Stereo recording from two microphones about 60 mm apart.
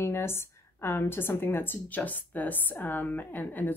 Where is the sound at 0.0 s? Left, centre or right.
Left.